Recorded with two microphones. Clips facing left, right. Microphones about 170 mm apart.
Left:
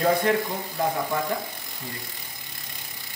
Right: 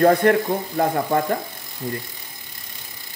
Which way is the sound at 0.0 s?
55° right (ahead or behind).